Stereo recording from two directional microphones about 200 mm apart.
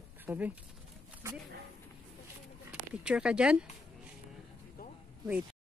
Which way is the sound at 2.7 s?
5° right (ahead or behind).